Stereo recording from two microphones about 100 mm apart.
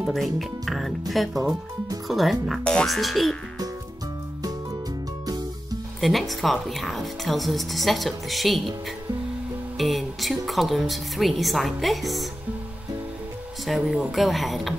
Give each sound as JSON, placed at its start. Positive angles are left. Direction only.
{"t": 0.0, "sound": "speech", "side_deg": 0}
{"t": 5.2, "sound": "music", "side_deg": -40}
{"t": 5.9, "sound": "speech", "side_deg": 0}
{"t": 9.8, "sound": "speech", "side_deg": 0}
{"t": 13.7, "sound": "speech", "side_deg": 0}